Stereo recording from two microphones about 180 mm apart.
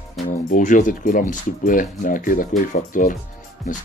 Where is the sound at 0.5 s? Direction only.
45° left (ahead or behind).